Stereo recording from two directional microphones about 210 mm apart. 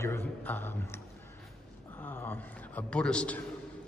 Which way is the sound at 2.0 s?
10° left (ahead or behind).